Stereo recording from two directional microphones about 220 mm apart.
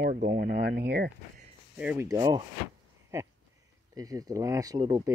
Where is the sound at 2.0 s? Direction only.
15° right (ahead or behind).